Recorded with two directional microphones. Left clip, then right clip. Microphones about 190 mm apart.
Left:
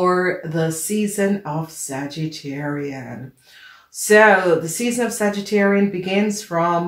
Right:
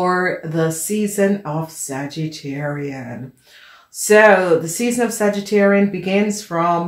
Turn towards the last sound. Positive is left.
turn(degrees=-30)  # may be behind; listen again after turning